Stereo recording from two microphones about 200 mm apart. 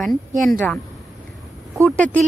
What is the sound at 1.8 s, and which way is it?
Speech, 10° left (ahead or behind).